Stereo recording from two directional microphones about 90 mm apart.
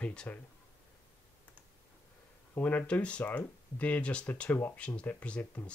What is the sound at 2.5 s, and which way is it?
Speech, 20° left (ahead or behind).